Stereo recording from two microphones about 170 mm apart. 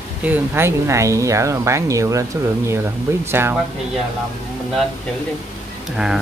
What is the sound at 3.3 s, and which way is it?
Speech, 15° right (ahead or behind).